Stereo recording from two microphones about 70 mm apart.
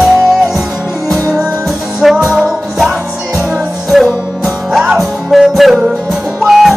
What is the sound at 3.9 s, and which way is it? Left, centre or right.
Music, centre.